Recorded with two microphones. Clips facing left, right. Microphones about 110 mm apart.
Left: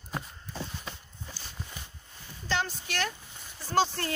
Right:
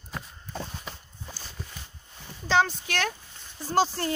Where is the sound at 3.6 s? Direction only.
15° right (ahead or behind).